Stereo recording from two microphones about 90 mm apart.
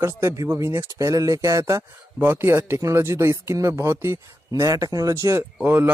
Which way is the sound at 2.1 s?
25° right (ahead or behind).